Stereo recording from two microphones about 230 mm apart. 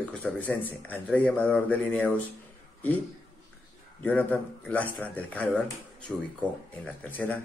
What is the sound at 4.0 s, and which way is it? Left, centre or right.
Speech, centre.